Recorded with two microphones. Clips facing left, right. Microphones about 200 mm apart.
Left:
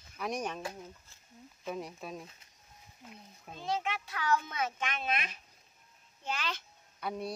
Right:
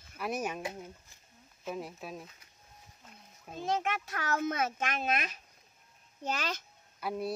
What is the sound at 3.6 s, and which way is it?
Speech, 50° right (ahead or behind).